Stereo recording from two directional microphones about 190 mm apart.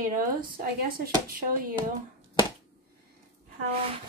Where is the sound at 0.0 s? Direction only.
45° right (ahead or behind).